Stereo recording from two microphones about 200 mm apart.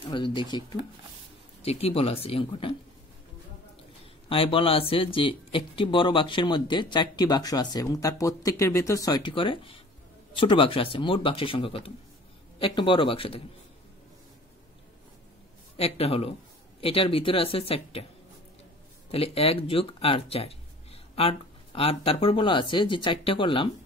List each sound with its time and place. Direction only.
0.1 s speech: 25° left (ahead or behind)
4.3 s speech: 25° left (ahead or behind)
15.8 s speech: 30° left (ahead or behind)
19.0 s speech: 30° left (ahead or behind)